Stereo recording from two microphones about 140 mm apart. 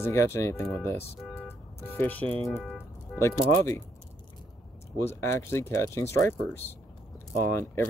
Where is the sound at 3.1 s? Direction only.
5° right (ahead or behind).